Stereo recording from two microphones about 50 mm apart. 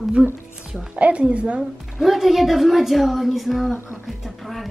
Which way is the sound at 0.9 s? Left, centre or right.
Right.